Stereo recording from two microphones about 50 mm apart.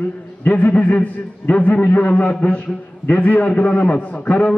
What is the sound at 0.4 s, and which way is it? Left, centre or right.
A man's voice, left.